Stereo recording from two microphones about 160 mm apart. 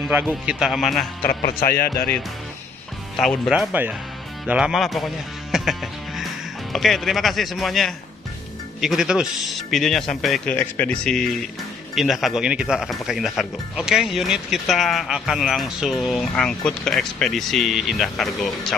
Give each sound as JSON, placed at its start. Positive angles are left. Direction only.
{"t": 0.5, "sound": "speech", "side_deg": -5}
{"t": 1.6, "sound": "speech", "side_deg": 70}
{"t": 3.2, "sound": "speech", "side_deg": 0}
{"t": 5.5, "sound": "music", "side_deg": 0}
{"t": 6.7, "sound": "speech", "side_deg": 0}